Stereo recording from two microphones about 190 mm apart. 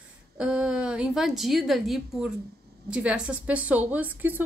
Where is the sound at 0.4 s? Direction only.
5° right (ahead or behind).